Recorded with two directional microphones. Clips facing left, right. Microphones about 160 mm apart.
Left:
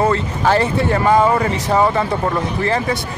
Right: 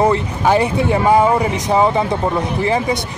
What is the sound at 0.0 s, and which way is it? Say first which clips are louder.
Speech: right 1 dB; 15° right (ahead or behind).